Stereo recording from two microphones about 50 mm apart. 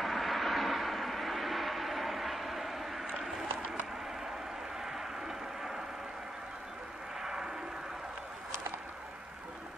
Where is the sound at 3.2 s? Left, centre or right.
Centre.